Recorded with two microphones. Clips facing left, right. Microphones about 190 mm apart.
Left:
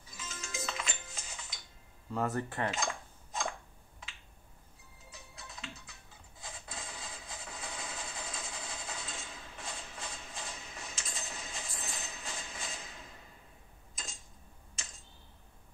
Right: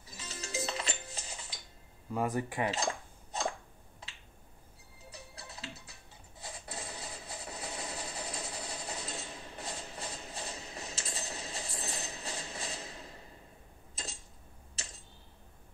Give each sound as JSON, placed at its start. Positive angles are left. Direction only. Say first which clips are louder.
{"t": 0.1, "sound": "music", "louder": "right 4 dB", "side_deg": -35}
{"t": 2.1, "sound": "speech", "louder": "right 1 dB", "side_deg": -15}
{"t": 2.7, "sound": "dishes", "louder": "right 2 dB", "side_deg": -35}
{"t": 5.1, "sound": "music", "louder": "right 2 dB", "side_deg": -35}
{"t": 6.4, "sound": "a sound", "louder": "right 3 dB", "side_deg": -35}